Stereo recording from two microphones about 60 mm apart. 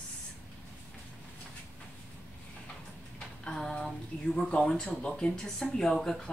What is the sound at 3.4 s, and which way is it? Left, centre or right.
Speech, centre.